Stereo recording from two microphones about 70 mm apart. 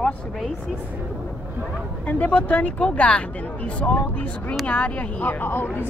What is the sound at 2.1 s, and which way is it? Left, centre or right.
Speech, left.